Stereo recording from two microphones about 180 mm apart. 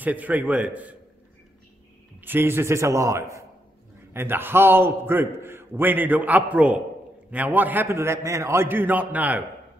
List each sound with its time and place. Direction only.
0.0 s a man's voice: 10° right (ahead or behind)
2.2 s a man's voice: 10° right (ahead or behind)